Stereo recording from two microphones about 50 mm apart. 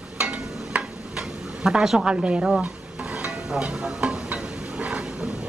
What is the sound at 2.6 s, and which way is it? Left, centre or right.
Stir, right.